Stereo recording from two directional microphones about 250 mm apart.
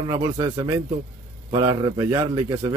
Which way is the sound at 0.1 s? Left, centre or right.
Centre.